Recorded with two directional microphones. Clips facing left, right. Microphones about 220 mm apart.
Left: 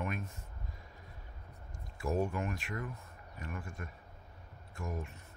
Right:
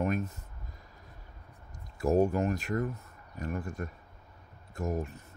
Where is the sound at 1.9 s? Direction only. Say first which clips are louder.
Right 8 dB; 40° right (ahead or behind).